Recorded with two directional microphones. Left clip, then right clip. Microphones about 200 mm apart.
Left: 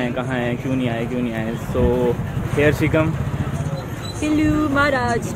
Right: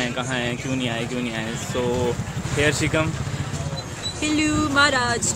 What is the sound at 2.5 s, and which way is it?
Speech, 5° right (ahead or behind).